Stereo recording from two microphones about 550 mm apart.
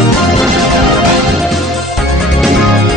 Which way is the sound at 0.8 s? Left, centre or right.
Right.